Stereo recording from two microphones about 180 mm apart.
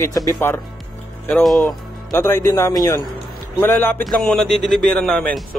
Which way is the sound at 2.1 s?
15° left (ahead or behind).